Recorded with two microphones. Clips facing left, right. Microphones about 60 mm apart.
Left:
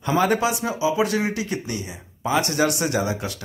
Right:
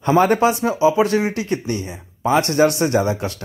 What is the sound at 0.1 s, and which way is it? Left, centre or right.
Speech, right.